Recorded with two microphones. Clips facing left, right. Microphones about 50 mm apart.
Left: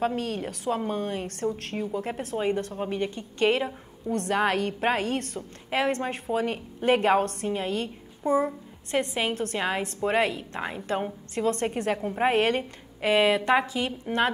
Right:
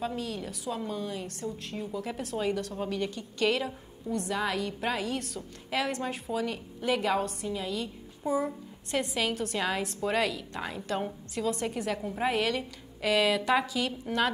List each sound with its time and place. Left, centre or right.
0.0 s a woman's voice: left
1.8 s a woman's voice: left
4.1 s a woman's voice: left
9.0 s a woman's voice: left